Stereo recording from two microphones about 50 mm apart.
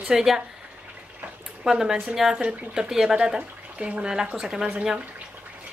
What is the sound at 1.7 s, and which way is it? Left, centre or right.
A woman's voice, centre.